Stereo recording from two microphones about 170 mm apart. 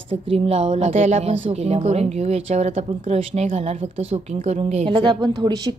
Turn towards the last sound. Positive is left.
turn(degrees=-20)  # may be behind; listen again after turning